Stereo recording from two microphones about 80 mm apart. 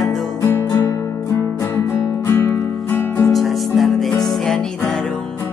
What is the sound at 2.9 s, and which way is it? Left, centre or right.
Music, left.